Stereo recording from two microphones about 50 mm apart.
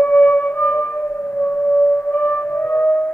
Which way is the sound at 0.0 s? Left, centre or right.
Left.